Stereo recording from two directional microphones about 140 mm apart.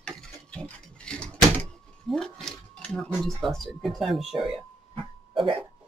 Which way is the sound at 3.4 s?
Centre (ahead or behind).